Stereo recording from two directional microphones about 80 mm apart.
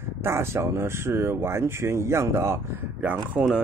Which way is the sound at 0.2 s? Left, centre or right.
Right.